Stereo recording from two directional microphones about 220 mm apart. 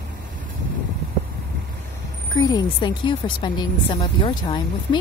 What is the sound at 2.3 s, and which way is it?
Speech, 20° left (ahead or behind).